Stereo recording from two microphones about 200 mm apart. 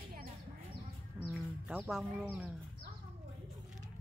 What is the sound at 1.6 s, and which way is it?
Speech, 5° right (ahead or behind).